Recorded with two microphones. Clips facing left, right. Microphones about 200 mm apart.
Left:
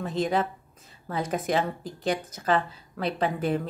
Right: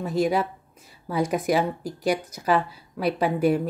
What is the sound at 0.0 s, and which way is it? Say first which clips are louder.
Speech: right 3 dB; 10° right (ahead or behind).